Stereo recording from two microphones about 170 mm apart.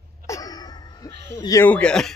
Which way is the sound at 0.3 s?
20° left (ahead or behind).